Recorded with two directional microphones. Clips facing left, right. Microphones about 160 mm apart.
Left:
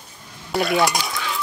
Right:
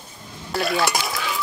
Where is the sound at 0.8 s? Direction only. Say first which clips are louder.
Left 2 dB; centre (ahead or behind).